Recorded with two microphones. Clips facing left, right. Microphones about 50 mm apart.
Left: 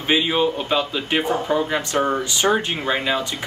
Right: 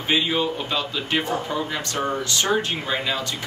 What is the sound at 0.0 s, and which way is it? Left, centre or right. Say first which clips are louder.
Speech: left 3 dB; centre.